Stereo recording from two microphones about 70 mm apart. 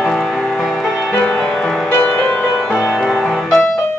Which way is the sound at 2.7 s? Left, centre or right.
Centre.